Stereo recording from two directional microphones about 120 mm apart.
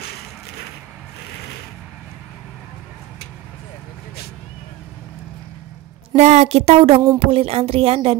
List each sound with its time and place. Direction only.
6.1 s speech: 70° right (ahead or behind); by 8.2 s 55° right (ahead or behind)